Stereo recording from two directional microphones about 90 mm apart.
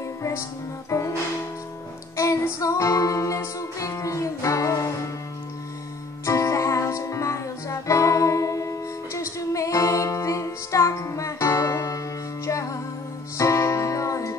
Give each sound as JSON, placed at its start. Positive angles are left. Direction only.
{"t": 0.2, "sound": "music", "side_deg": 35}
{"t": 2.1, "sound": "music", "side_deg": 35}
{"t": 6.2, "sound": "music", "side_deg": 35}